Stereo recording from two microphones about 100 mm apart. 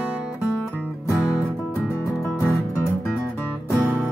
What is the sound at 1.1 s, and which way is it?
Music, 25° left (ahead or behind).